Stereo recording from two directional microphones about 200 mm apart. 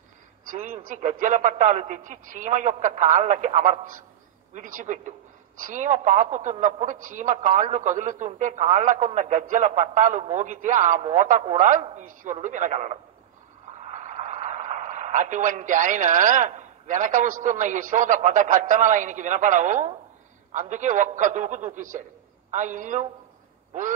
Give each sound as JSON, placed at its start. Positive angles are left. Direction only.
{"t": 0.5, "sound": "a woman's voice", "side_deg": -40}